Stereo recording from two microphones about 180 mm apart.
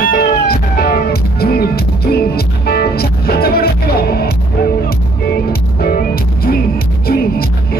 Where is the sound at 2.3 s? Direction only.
60° left (ahead or behind).